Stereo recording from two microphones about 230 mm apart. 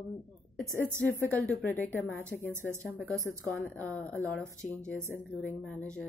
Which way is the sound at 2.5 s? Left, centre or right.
Centre.